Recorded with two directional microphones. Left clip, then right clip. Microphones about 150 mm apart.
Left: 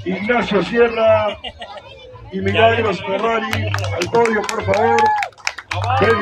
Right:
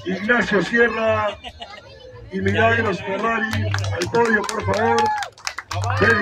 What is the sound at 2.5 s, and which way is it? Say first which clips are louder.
Speech: left 4 dB; 25° right (ahead or behind).